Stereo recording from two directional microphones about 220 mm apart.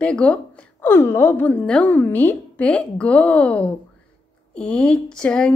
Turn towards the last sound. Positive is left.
turn(degrees=5)  # may be behind; listen again after turning